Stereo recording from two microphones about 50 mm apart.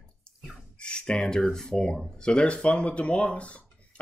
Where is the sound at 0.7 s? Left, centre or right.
Centre.